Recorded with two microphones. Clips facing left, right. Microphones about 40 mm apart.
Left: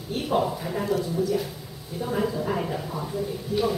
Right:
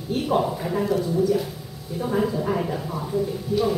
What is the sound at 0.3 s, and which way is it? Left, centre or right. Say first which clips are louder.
A woman's voice: right 1 dB; centre.